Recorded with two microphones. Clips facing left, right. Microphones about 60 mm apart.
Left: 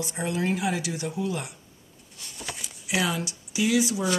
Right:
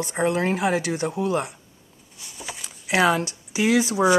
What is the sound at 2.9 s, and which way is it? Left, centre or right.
Speech, right.